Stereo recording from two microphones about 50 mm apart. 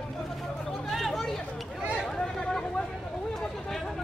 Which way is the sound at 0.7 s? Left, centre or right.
Centre.